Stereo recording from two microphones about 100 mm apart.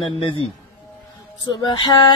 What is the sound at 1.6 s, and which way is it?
Female singing, 45° left (ahead or behind).